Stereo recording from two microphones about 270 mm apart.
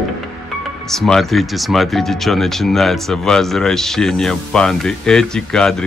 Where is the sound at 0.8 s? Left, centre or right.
Centre.